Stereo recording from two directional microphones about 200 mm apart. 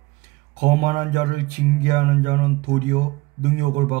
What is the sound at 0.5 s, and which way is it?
Speech, 45° right (ahead or behind).